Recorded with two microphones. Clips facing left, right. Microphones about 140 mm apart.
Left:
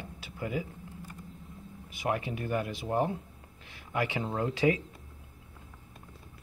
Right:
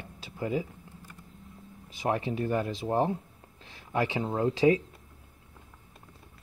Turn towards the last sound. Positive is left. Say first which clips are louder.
# right 4 dB
turn(degrees=-25)  # may be behind; listen again after turning